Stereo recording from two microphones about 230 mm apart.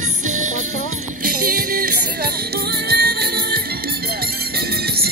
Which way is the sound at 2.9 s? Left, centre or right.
Right.